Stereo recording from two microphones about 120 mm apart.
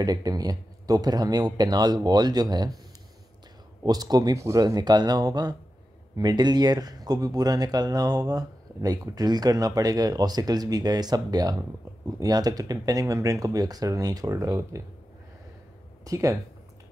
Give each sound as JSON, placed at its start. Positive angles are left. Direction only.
{"t": 0.0, "sound": "speech", "side_deg": -35}
{"t": 3.8, "sound": "speech", "side_deg": -35}
{"t": 16.0, "sound": "speech", "side_deg": -30}